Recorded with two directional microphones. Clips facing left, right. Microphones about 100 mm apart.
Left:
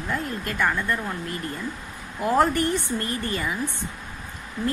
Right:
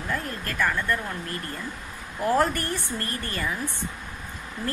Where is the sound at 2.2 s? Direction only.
20° left (ahead or behind).